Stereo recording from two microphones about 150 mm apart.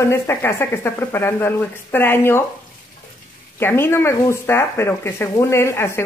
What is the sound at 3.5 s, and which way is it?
A woman's voice, 15° left (ahead or behind).